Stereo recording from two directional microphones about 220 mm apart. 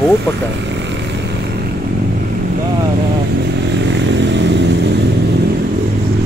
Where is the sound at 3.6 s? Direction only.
50° right (ahead or behind).